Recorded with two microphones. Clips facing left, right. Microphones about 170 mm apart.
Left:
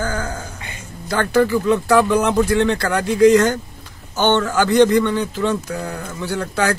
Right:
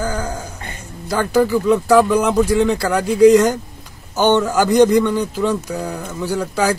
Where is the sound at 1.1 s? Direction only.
5° right (ahead or behind).